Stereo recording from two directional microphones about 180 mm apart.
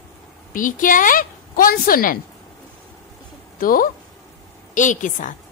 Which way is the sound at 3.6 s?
50° left (ahead or behind).